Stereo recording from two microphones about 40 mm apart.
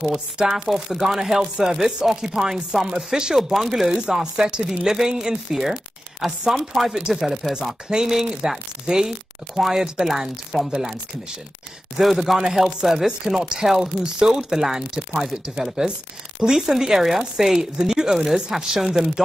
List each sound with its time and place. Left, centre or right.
0.1 s speech: centre
3.5 s speech: centre
4.0 s speech: centre
7.4 s speech: centre
7.9 s speech: centre
12.0 s speech: centre